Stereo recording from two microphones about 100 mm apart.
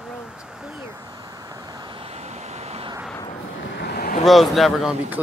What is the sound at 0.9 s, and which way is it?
Vehicle, 35° right (ahead or behind).